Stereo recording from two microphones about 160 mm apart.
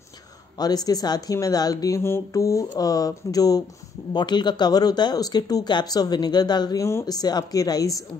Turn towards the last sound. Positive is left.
turn(degrees=20)  # may be behind; listen again after turning